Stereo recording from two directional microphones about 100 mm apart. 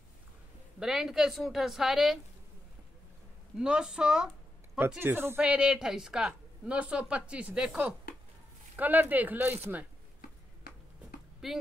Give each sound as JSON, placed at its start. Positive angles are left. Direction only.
{"t": 0.7, "sound": "a woman's voice", "side_deg": -5}
{"t": 3.5, "sound": "a woman's voice", "side_deg": -10}
{"t": 4.7, "sound": "speech", "side_deg": -20}
{"t": 5.4, "sound": "a woman's voice", "side_deg": -10}
{"t": 11.4, "sound": "a woman's voice", "side_deg": -5}